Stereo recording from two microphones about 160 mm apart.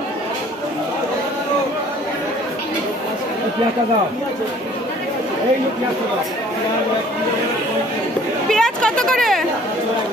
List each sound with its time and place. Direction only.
8.5 s speech: 5° left (ahead or behind)